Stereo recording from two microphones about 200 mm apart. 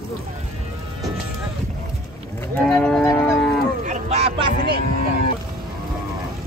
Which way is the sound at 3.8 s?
35° right (ahead or behind).